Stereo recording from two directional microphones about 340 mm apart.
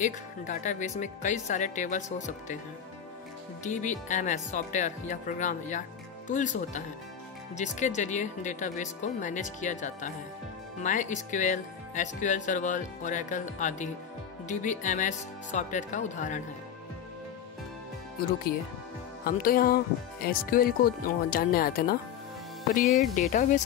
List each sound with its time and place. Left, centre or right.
0.0 s speech: left
3.6 s speech: left
19.2 s speech: left
22.8 s speech: centre